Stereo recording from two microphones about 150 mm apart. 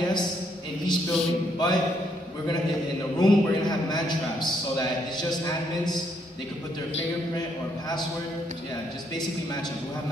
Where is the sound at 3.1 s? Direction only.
25° left (ahead or behind).